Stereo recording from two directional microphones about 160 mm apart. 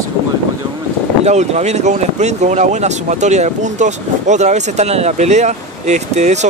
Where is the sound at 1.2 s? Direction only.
45° right (ahead or behind).